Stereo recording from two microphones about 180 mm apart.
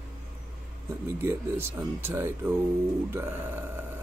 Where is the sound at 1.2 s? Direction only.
15° right (ahead or behind).